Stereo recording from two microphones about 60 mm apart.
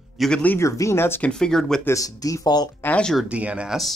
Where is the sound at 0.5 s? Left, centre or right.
Left.